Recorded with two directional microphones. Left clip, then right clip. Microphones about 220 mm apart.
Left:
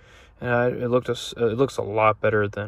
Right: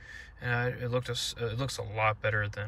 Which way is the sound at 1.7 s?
15° right (ahead or behind).